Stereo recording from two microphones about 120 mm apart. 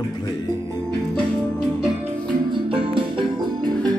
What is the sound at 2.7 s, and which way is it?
Music, 45° right (ahead or behind).